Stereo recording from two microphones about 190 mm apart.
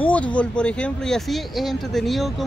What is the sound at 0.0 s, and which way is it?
Speech, 5° left (ahead or behind).